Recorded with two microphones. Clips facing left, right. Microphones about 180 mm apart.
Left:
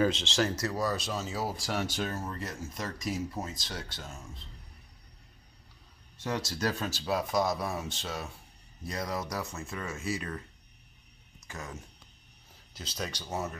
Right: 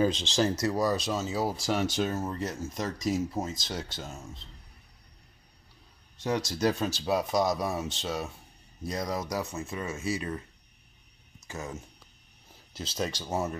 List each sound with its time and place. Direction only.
0.0 s speech: 20° right (ahead or behind)
6.2 s speech: 20° right (ahead or behind)
11.4 s speech: 25° right (ahead or behind)
13.3 s speech: 30° right (ahead or behind)